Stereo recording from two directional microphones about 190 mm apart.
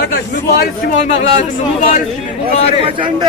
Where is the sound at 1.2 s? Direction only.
40° left (ahead or behind).